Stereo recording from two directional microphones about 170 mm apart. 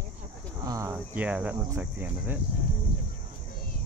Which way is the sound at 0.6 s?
20° right (ahead or behind).